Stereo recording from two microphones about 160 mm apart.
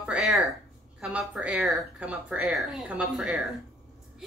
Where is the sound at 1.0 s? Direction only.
5° right (ahead or behind).